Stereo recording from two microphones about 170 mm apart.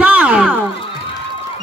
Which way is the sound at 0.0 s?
10° right (ahead or behind).